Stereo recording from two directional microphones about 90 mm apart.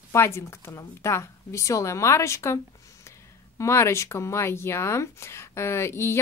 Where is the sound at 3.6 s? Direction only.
30° left (ahead or behind).